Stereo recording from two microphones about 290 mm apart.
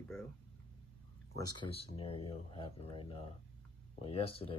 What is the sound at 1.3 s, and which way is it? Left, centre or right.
Speech, centre.